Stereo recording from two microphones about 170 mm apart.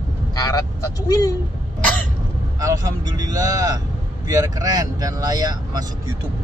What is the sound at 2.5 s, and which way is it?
Speech, 20° right (ahead or behind).